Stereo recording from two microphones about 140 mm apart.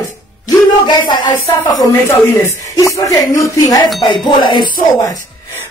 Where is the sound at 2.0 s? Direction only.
15° left (ahead or behind).